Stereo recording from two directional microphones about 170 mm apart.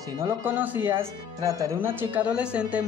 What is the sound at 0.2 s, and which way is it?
Speech, 15° right (ahead or behind).